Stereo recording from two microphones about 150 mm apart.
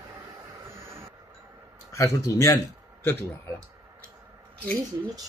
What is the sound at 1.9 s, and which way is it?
Speech, 20° left (ahead or behind).